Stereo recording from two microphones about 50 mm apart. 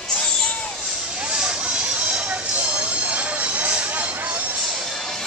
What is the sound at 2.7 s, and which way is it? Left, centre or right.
Music, right.